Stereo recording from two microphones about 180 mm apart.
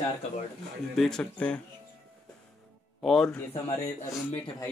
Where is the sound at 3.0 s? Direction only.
Centre (ahead or behind).